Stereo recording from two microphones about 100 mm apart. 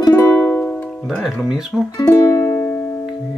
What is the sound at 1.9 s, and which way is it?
Music, 30° left (ahead or behind).